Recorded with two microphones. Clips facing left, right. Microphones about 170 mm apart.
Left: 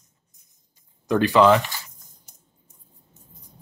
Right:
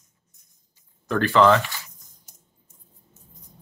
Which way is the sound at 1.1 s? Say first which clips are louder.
Left 1 dB; 15° left (ahead or behind).